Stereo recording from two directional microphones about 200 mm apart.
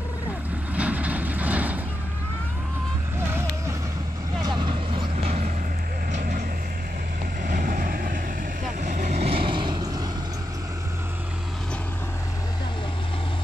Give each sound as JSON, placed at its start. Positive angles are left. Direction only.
{"t": 0.7, "sound": "vehicle", "side_deg": -5}
{"t": 4.4, "sound": "vehicle", "side_deg": -20}
{"t": 5.1, "sound": "vehicle", "side_deg": -35}
{"t": 7.4, "sound": "vehicle", "side_deg": -40}